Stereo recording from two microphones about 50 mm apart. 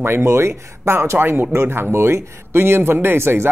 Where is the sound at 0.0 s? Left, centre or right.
Right.